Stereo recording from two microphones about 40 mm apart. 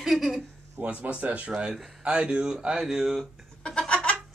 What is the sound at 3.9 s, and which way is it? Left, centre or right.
Goat, left.